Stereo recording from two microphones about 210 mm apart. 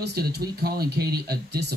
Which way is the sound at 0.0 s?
50° right (ahead or behind).